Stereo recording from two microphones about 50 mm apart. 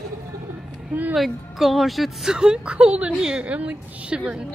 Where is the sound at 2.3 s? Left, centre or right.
Centre.